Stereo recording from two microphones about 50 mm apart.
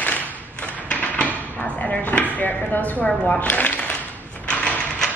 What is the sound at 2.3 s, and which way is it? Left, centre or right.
Speech, left.